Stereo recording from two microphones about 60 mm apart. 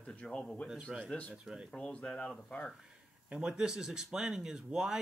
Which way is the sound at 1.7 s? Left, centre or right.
Centre.